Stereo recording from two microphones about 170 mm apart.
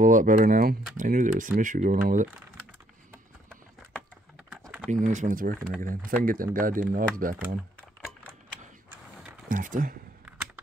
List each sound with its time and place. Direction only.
0.0 s speech: 50° right (ahead or behind)
4.9 s speech: 50° right (ahead or behind)
9.5 s speech: 50° right (ahead or behind)
10.2 s a sound: 10° right (ahead or behind)